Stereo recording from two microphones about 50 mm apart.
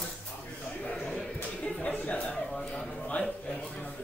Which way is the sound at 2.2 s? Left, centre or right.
Centre.